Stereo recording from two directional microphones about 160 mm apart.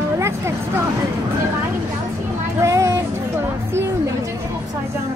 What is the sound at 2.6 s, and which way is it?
Speech, 20° right (ahead or behind).